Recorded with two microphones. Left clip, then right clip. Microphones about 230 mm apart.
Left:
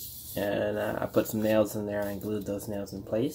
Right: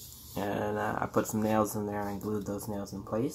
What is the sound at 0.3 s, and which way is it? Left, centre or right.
Speech, centre.